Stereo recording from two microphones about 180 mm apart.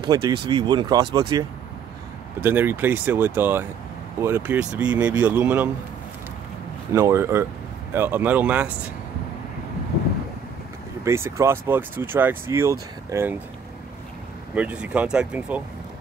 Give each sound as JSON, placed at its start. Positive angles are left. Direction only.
{"t": 0.1, "sound": "speech", "side_deg": -20}
{"t": 2.4, "sound": "speech", "side_deg": -10}
{"t": 6.9, "sound": "speech", "side_deg": -15}
{"t": 11.1, "sound": "speech", "side_deg": -15}
{"t": 14.5, "sound": "speech", "side_deg": -5}